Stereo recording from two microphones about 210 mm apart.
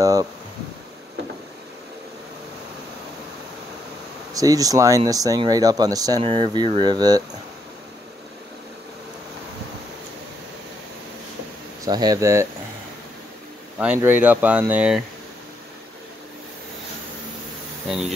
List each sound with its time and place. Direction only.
0.0 s speech: 15° right (ahead or behind)
4.3 s speech: 15° right (ahead or behind)
11.8 s speech: 20° right (ahead or behind)
13.7 s speech: 5° right (ahead or behind)
17.8 s speech: centre (ahead or behind)